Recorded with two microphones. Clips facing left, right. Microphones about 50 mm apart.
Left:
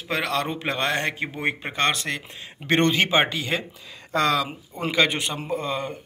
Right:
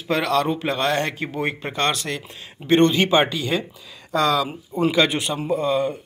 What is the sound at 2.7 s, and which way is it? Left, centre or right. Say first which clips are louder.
Speech: right 4 dB; left.